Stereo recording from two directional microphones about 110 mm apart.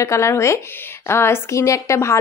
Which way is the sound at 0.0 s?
25° left (ahead or behind).